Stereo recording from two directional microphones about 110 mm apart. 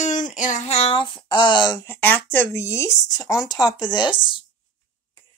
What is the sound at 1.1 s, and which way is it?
Speech, 45° left (ahead or behind).